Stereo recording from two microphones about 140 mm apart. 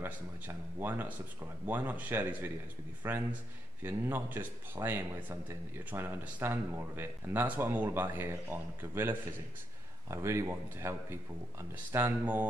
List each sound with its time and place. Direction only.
0.7 s speech: 15° right (ahead or behind)